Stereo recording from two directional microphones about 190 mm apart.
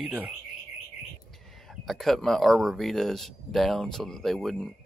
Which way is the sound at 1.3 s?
Centre (ahead or behind).